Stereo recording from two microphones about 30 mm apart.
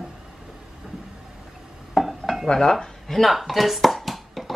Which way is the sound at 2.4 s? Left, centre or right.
Left.